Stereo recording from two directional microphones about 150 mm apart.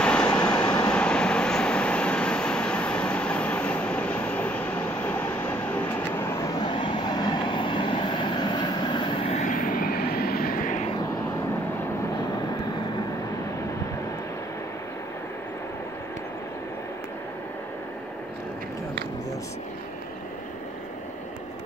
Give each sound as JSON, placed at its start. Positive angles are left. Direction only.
{"t": 0.0, "sound": "vehicle", "side_deg": 5}
{"t": 7.0, "sound": "train", "side_deg": 30}
{"t": 9.4, "sound": "vehicle", "side_deg": 65}